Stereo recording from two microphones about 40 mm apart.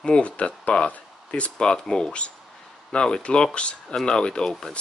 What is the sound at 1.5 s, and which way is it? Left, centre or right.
Speech, centre.